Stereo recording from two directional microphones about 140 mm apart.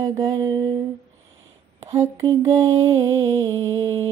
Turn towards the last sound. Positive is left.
turn(degrees=-25)  # may be behind; listen again after turning